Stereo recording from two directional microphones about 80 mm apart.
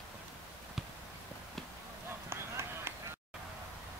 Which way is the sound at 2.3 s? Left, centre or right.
Right.